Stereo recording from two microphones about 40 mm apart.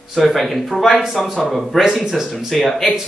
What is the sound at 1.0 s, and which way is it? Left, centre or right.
Speech, centre.